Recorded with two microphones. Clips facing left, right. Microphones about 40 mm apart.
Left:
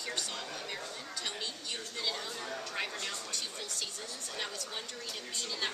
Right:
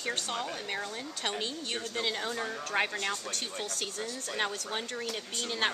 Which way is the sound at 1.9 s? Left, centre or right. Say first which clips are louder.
Right 5 dB; right.